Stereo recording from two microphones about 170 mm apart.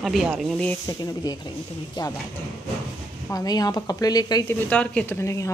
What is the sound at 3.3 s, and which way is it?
Speech, 20° left (ahead or behind).